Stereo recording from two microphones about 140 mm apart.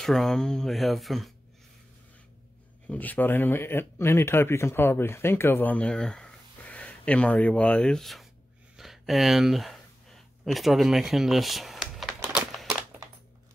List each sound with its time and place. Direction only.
0.0 s speech: centre (ahead or behind)
2.9 s speech: 10° left (ahead or behind)
8.7 s a sound: centre (ahead or behind)